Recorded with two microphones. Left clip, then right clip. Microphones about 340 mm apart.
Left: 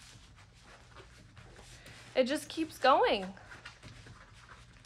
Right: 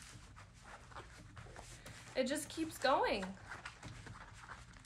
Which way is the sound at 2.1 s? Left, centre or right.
Centre.